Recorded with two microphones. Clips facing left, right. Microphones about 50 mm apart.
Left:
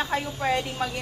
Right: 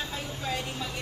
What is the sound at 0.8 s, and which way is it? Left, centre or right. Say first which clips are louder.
Speech: left 7 dB; left.